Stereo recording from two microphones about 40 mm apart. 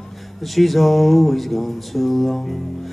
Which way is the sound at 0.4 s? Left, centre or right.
Centre.